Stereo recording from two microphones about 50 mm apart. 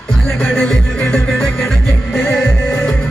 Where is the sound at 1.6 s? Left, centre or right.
Left.